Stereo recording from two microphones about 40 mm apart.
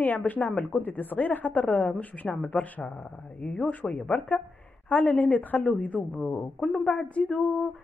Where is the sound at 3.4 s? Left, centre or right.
Left.